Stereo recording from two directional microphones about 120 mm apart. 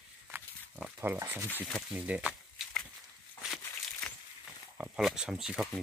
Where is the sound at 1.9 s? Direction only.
10° right (ahead or behind).